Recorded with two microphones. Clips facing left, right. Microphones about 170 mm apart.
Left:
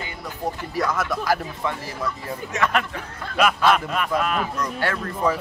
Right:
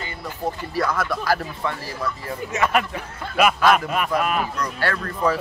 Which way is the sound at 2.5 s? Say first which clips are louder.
Right 2 dB; 10° right (ahead or behind).